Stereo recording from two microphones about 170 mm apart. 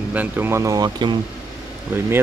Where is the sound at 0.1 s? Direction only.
10° right (ahead or behind).